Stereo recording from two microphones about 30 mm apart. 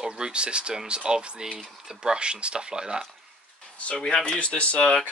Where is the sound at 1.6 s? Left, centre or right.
Right.